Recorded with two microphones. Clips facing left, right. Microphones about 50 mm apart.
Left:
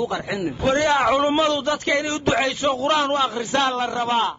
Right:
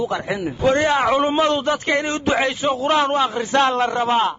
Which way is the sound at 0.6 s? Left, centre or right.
Centre.